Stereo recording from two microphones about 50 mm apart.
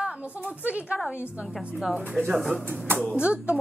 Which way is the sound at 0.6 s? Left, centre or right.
Right.